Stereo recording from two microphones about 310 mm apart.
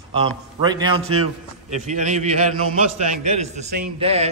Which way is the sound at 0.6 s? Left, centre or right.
Centre.